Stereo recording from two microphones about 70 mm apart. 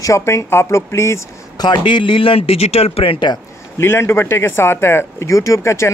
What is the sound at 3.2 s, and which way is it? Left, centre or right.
Speech, left.